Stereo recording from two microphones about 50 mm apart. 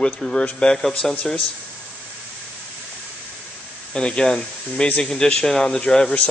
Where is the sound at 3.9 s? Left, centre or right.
Centre.